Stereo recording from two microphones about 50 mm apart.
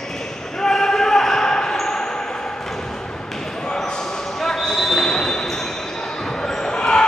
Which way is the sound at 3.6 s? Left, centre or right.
Centre.